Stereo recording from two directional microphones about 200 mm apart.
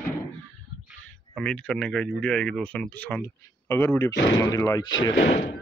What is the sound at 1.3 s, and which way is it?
Speech, 5° left (ahead or behind).